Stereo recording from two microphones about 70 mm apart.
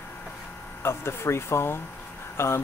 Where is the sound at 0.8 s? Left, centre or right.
Left.